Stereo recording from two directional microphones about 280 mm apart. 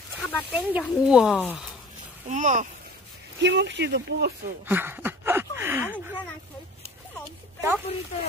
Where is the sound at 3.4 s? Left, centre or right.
Right.